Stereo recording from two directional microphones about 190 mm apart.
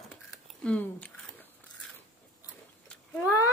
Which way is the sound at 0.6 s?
5° left (ahead or behind).